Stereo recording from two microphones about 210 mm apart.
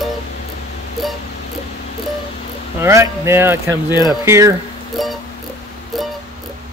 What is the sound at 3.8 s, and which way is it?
Speech, 20° left (ahead or behind).